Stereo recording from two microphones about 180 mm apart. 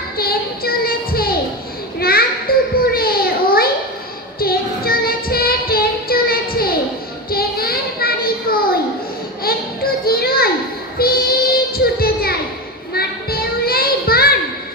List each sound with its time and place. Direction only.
0.2 s a sound: 55° left (ahead or behind)
2.0 s children playing: 60° left (ahead or behind)
4.4 s music: 55° left (ahead or behind)
7.2 s a sound: 55° left (ahead or behind)
11.0 s child singing: 55° left (ahead or behind)
12.9 s children playing: 55° left (ahead or behind)